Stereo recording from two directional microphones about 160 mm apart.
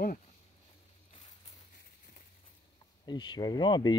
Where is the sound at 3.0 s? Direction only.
25° left (ahead or behind).